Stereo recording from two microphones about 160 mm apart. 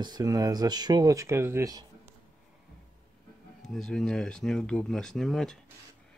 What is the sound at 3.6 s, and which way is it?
Speech, 5° left (ahead or behind).